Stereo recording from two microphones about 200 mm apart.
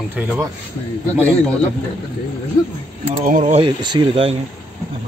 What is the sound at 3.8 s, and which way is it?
Speech, 25° right (ahead or behind).